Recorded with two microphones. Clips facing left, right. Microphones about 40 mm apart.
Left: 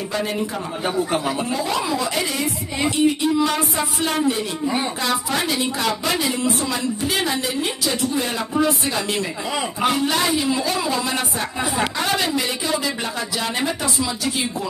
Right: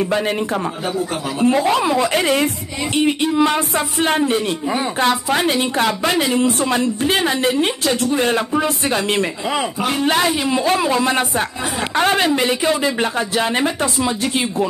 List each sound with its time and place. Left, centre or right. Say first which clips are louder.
0.8 s speech: left 1 dB; centre
1.4 s a woman's voice: right 7 dB; right
10.2 s speech: right 2 dB; right
10.6 s a woman's voice: right 6 dB; right